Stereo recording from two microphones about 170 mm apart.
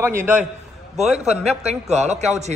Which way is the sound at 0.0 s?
15° right (ahead or behind).